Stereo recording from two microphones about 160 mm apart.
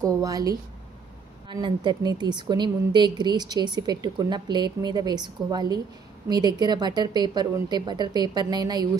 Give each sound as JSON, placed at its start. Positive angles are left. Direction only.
{"t": 0.0, "sound": "a woman's voice", "side_deg": -20}